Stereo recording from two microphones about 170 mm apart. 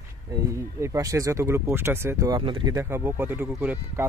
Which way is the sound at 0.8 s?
20° right (ahead or behind).